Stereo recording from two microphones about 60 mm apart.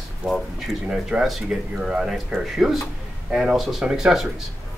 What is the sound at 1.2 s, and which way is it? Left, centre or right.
Speech, centre.